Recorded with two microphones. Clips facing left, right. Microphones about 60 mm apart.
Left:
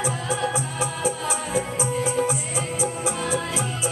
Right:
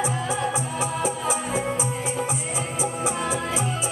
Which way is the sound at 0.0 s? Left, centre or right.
Right.